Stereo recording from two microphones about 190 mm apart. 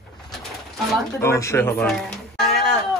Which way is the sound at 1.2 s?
15° left (ahead or behind).